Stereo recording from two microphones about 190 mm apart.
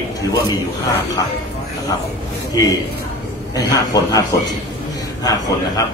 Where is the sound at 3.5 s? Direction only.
20° left (ahead or behind).